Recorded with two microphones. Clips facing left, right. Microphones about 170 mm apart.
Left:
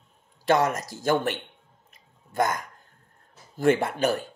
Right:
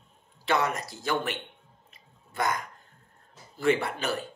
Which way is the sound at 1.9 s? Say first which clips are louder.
Left 7 dB; 45° left (ahead or behind).